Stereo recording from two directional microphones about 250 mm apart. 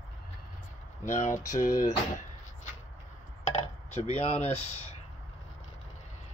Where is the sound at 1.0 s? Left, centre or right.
Left.